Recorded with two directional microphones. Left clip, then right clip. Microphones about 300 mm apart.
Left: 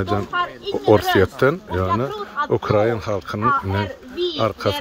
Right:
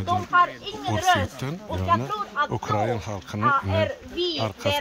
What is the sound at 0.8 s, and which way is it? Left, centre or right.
A woman's voice, centre.